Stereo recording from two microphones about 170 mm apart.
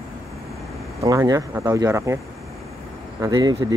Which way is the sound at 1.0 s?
20° right (ahead or behind).